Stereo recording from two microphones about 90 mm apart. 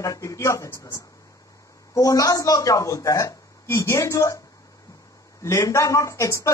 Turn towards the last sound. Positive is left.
turn(degrees=35)  # may be behind; listen again after turning